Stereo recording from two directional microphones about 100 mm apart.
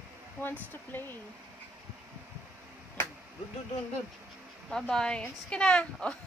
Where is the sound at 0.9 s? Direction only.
20° left (ahead or behind).